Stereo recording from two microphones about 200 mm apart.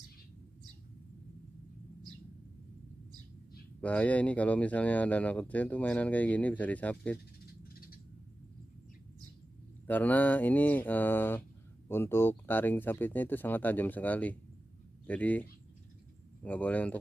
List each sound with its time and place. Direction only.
3.8 s speech: 5° left (ahead or behind)
7.7 s bird: 50° left (ahead or behind)
9.8 s speech: 10° left (ahead or behind)
16.4 s speech: 10° left (ahead or behind)